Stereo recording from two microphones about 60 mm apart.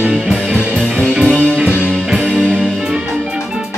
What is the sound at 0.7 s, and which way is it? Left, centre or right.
Music, right.